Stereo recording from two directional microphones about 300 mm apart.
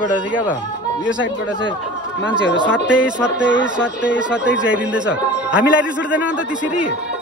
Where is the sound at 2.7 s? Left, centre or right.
Centre.